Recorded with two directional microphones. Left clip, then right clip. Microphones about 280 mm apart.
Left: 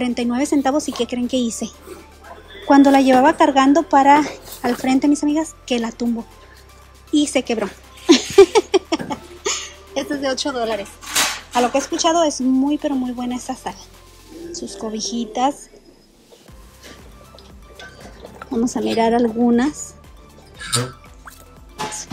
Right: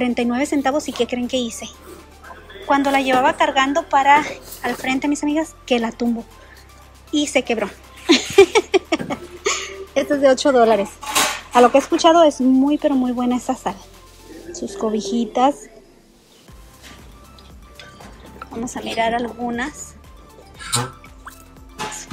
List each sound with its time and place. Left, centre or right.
0.0 s speech: centre
7.1 s a sound: centre
11.5 s speech: centre
18.6 s speech: centre
21.7 s music: left